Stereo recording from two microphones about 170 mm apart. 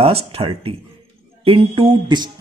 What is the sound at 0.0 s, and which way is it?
Speech, 35° right (ahead or behind).